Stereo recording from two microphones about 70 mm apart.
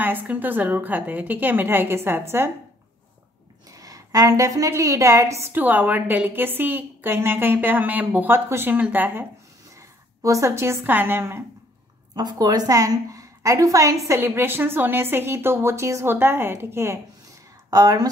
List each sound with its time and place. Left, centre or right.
0.0 s a woman's voice: right
3.7 s a woman's voice: right
5.5 s a woman's voice: right
9.8 s a woman's voice: right
12.2 s a woman's voice: right
14.2 s speech: right
17.6 s speech: right